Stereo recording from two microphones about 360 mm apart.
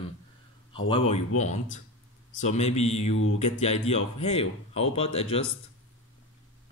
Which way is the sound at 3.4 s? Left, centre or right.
Centre.